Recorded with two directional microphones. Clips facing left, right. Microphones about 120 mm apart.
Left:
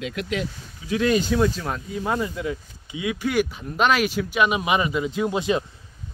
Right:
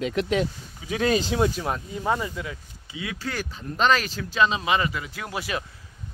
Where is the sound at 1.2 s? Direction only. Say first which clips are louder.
Left 2 dB; 25° right (ahead or behind).